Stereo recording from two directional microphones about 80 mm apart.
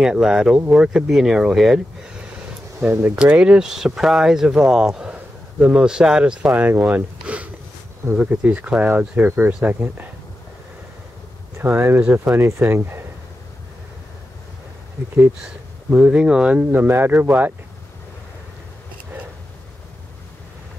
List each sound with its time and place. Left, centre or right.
0.0 s speech: centre
2.8 s speech: right
11.5 s speech: right
12.0 s speech: centre
12.4 s speech: right
15.9 s speech: centre
16.7 s speech: right